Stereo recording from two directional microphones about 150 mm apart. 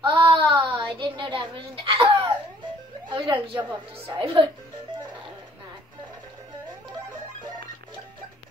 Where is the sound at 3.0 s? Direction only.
35° right (ahead or behind).